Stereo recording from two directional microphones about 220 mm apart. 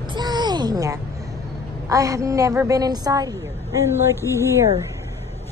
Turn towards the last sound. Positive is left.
turn(degrees=-10)  # may be behind; listen again after turning